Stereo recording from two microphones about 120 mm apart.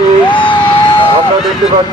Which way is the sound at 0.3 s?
45° left (ahead or behind).